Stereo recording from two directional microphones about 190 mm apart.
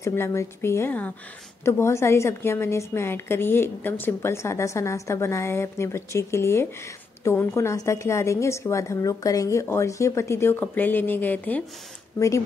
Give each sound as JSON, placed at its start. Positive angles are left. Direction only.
{"t": 0.0, "sound": "a woman's voice", "side_deg": 15}